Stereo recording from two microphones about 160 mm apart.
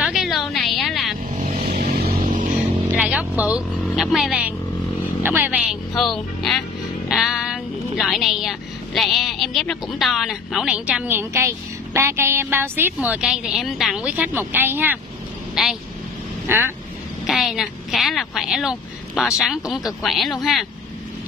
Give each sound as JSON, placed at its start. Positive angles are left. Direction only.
{"t": 0.0, "sound": "a sound", "side_deg": 0}
{"t": 1.9, "sound": "music", "side_deg": -50}
{"t": 2.9, "sound": "music", "side_deg": -10}
{"t": 3.4, "sound": "a woman's voice", "side_deg": -5}
{"t": 15.5, "sound": "speech", "side_deg": 0}
{"t": 16.4, "sound": "speech", "side_deg": -15}
{"t": 17.3, "sound": "a woman's voice", "side_deg": 0}